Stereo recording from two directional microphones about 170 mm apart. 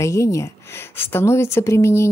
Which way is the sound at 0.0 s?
15° left (ahead or behind).